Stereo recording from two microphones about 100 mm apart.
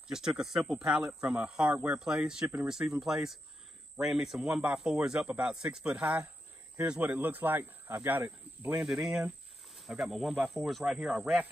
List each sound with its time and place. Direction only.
0.1 s speech: 5° right (ahead or behind)
8.8 s speech: 5° right (ahead or behind)